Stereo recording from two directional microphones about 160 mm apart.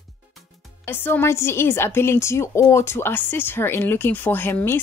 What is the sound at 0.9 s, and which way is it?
A woman's voice, 15° left (ahead or behind).